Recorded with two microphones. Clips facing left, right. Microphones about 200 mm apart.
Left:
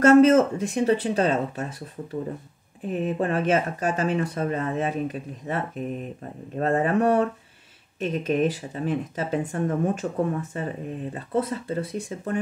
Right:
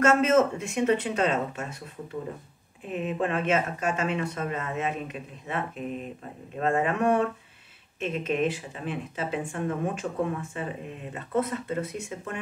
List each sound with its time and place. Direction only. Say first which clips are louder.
0.0 s speech: left 6 dB; 35° left (ahead or behind)